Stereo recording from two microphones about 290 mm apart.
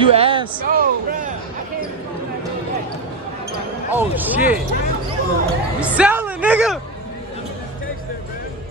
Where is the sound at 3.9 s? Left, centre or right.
Centre.